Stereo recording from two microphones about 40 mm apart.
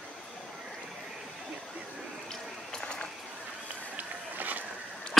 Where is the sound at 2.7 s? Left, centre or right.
Left.